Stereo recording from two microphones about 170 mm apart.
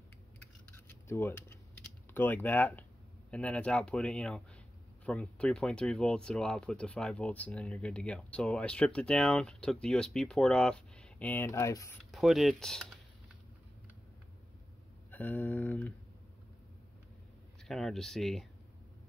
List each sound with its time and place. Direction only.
0.7 s a sound: 15° left (ahead or behind)
2.1 s speech: 10° left (ahead or behind)
12.0 s speech: centre (ahead or behind)
15.0 s speech: 10° left (ahead or behind)
17.6 s speech: centre (ahead or behind)